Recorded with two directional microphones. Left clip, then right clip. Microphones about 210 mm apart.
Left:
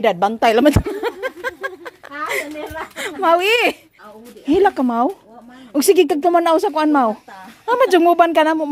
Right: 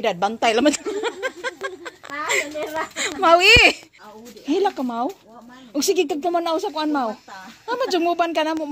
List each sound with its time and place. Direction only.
0.0 s a sound: 25° left (ahead or behind)
3.0 s speech: 15° left (ahead or behind)
4.5 s speech: 30° left (ahead or behind)